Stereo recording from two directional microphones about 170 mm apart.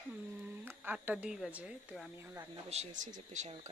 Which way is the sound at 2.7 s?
45° right (ahead or behind).